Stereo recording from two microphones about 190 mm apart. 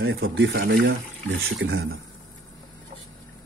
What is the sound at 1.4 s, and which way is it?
Speech, 90° right.